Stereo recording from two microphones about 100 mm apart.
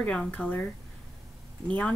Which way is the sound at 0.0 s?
10° left (ahead or behind).